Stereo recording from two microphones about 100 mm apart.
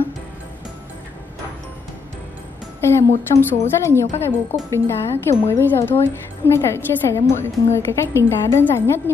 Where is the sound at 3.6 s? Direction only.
25° left (ahead or behind).